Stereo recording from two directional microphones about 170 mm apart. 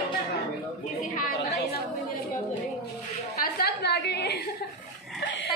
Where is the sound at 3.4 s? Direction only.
65° left (ahead or behind).